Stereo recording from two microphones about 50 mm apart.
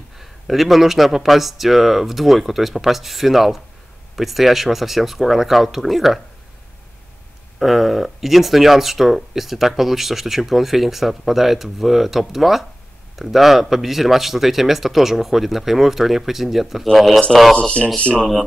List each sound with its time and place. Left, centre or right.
0.2 s speech: centre
7.5 s speech: centre
17.6 s speech: left